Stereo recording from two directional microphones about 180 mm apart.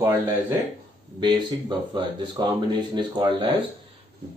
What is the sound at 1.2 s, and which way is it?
Speech, 25° right (ahead or behind).